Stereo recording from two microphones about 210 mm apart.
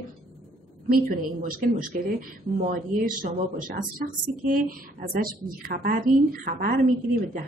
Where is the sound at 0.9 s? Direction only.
40° right (ahead or behind).